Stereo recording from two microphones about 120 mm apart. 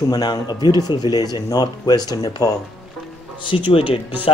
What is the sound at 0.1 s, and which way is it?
Speech, 35° left (ahead or behind).